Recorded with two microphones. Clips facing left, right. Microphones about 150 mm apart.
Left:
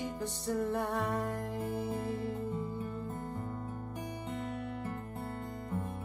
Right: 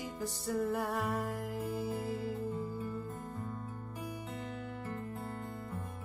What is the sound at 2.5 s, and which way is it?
Music, 20° left (ahead or behind).